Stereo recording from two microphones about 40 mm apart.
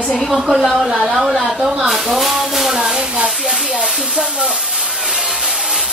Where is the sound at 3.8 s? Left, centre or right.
Right.